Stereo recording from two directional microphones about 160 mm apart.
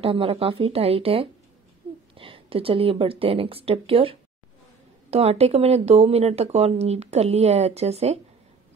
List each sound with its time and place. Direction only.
0.0 s speech: 35° right (ahead or behind)